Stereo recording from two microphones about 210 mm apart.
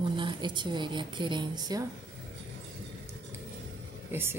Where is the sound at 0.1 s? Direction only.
20° right (ahead or behind).